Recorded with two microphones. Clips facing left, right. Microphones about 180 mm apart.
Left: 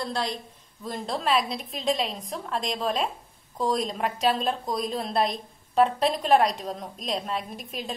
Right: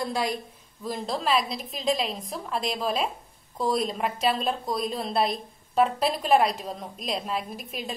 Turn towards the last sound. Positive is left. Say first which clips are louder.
# even
turn(degrees=-5)  # may be behind; listen again after turning